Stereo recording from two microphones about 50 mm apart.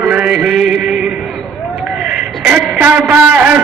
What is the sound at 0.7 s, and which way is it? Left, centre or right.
Music, right.